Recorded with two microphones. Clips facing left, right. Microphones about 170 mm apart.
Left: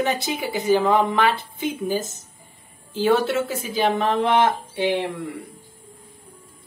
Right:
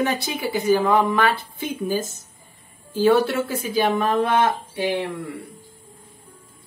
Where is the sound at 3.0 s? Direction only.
20° left (ahead or behind).